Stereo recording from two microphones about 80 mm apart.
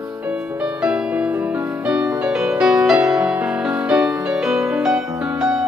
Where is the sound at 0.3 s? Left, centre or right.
Centre.